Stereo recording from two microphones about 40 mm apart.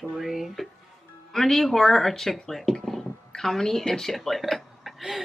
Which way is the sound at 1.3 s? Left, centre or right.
Centre.